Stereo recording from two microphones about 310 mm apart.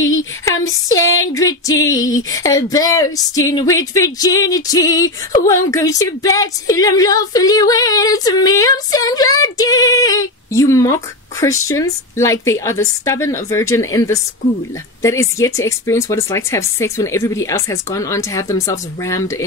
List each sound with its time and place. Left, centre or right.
0.2 s speech: centre
1.0 s speech: left
1.3 s speech: centre